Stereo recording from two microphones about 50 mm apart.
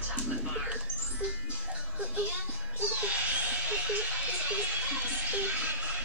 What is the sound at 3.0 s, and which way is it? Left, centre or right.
Music, right.